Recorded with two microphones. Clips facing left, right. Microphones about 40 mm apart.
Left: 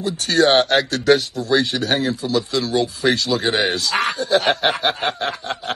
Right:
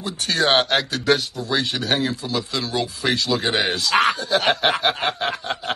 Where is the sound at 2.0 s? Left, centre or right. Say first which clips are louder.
Left 3 dB; right.